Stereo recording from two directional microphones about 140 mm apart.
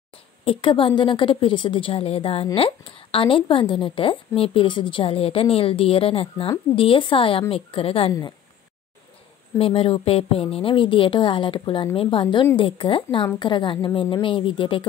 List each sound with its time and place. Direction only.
0.5 s a woman's voice: 40° left (ahead or behind)
9.6 s a woman's voice: 40° left (ahead or behind)